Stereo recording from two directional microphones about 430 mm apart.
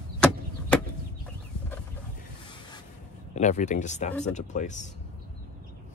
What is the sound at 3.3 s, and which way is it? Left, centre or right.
Speech, centre.